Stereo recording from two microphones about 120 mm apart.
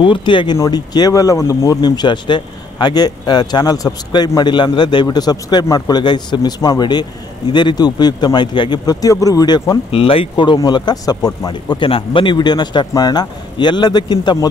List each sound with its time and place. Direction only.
0.0 s speech: 45° left (ahead or behind)
9.8 s speech: 50° left (ahead or behind)